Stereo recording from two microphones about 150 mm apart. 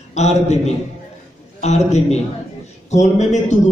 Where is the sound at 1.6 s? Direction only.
50° left (ahead or behind).